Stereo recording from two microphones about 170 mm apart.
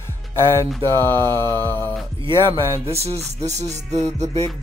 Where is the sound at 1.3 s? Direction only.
15° left (ahead or behind).